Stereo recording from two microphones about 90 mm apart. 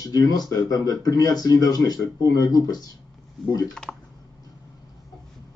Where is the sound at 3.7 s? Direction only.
5° left (ahead or behind).